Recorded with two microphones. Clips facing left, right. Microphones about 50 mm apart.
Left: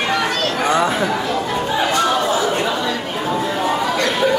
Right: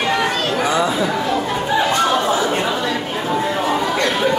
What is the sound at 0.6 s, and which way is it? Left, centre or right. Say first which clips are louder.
Speech: left 2 dB; left.